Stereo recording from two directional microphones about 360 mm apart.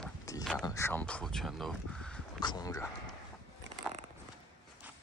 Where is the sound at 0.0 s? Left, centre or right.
Centre.